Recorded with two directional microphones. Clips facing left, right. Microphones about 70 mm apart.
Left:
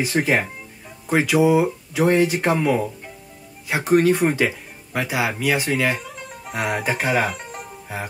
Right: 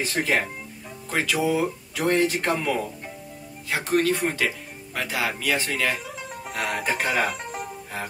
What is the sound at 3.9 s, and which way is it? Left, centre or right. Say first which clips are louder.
Speech: left 6 dB; centre.